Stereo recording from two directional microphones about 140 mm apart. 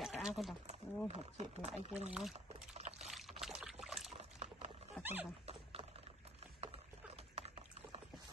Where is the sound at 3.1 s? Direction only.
Centre (ahead or behind).